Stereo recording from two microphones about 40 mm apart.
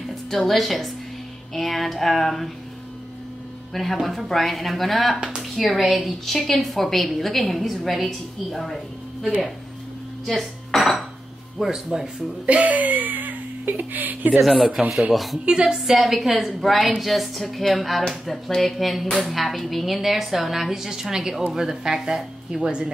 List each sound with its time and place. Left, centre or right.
0.3 s a woman's voice: centre
3.7 s a woman's voice: centre
11.7 s a woman's voice: centre
12.4 s speech: right
14.9 s a woman's voice: centre
15.3 s a woman's voice: right
15.8 s a woman's voice: centre